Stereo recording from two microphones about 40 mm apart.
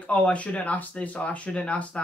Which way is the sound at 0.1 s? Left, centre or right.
Left.